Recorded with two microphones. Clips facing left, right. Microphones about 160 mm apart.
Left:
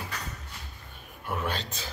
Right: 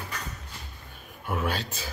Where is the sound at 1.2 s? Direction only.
5° right (ahead or behind).